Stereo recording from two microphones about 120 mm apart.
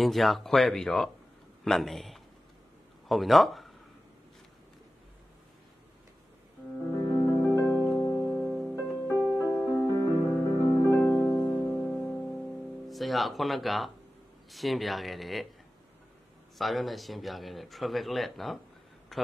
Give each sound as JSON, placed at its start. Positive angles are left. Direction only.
{"t": 0.0, "sound": "a man's voice", "side_deg": 0}
{"t": 7.1, "sound": "music", "side_deg": 35}
{"t": 8.4, "sound": "music", "side_deg": 5}
{"t": 8.9, "sound": "music", "side_deg": 20}
{"t": 11.8, "sound": "music", "side_deg": 10}
{"t": 12.8, "sound": "speech", "side_deg": 0}
{"t": 16.5, "sound": "speech", "side_deg": 0}
{"t": 19.1, "sound": "a sound", "side_deg": 0}